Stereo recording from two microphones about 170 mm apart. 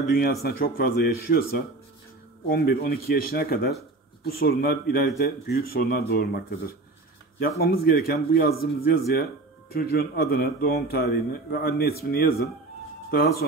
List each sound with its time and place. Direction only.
0.1 s a man's voice: 60° left (ahead or behind)